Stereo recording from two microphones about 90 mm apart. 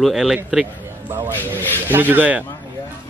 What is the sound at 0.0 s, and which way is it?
Speech, centre (ahead or behind).